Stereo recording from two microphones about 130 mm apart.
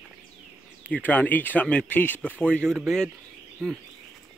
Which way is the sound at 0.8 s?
15° left (ahead or behind).